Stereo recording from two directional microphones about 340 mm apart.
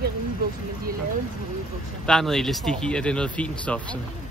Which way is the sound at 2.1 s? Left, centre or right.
Centre.